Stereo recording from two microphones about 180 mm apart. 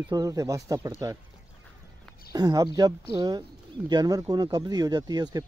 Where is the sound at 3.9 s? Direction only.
20° right (ahead or behind).